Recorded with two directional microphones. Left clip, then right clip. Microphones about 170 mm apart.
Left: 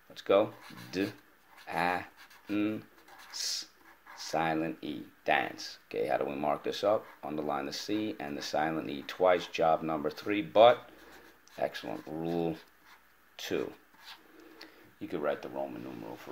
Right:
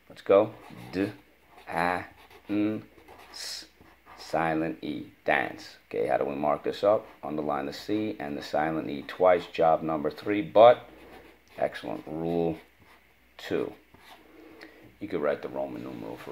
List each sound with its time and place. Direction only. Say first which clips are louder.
0.1 s speech: right 5 dB; 15° left (ahead or behind)
4.7 s speech: right 5 dB; 5° left (ahead or behind)
14.6 s a sound: right 4 dB; 5° left (ahead or behind)